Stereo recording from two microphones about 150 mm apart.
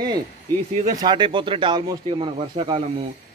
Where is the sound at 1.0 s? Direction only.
30° right (ahead or behind).